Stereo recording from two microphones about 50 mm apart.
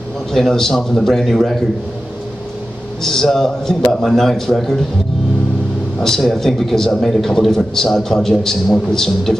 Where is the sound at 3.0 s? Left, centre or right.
Centre.